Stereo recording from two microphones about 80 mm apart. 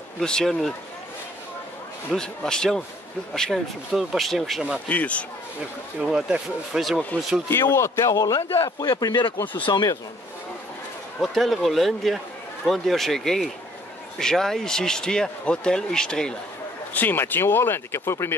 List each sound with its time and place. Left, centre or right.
0.2 s speech: centre
2.1 s speech: centre
4.8 s speech: centre
5.9 s speech: centre
7.4 s speech: left
8.1 s speech: left
11.1 s speech: centre
16.9 s speech: left